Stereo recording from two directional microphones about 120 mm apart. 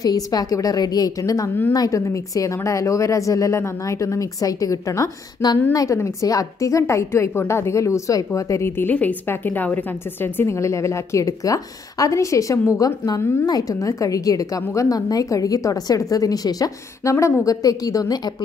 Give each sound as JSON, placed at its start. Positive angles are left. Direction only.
{"t": 0.0, "sound": "a woman's voice", "side_deg": 35}